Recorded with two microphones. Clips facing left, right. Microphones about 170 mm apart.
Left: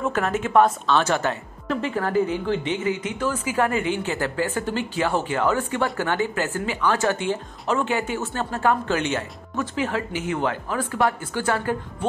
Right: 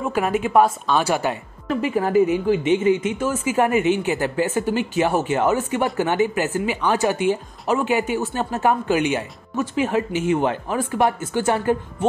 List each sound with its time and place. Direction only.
0.1 s a woman's voice: 10° right (ahead or behind)